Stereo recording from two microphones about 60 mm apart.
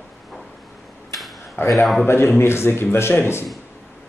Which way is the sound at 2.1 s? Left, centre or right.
Left.